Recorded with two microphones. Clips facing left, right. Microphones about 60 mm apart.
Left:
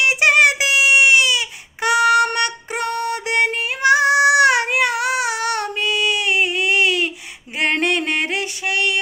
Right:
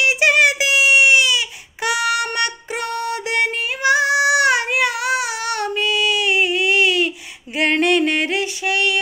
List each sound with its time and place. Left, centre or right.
0.0 s child singing: left
7.5 s music: left